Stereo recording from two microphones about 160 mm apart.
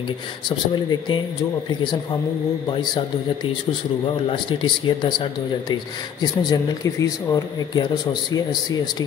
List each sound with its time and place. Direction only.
0.5 s speech: 25° left (ahead or behind)
2.7 s speech: 25° left (ahead or behind)
4.3 s speech: 30° left (ahead or behind)